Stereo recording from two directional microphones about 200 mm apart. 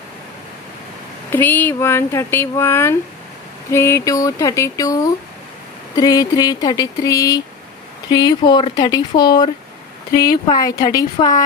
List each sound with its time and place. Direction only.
1.3 s speech: 10° left (ahead or behind)